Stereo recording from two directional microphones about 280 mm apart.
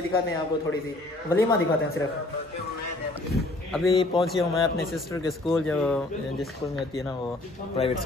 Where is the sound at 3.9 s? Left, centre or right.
Centre.